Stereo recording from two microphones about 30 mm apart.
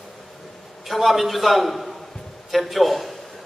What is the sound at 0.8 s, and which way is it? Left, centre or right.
A man's voice, centre.